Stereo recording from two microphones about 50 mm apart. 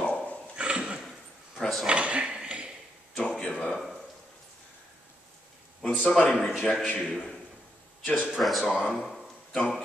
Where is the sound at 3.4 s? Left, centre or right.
Centre.